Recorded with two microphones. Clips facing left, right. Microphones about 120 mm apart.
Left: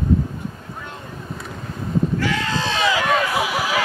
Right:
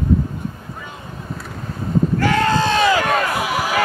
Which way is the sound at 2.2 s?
50° right (ahead or behind).